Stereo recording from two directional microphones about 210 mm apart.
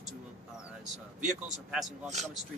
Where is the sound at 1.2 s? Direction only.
Centre (ahead or behind).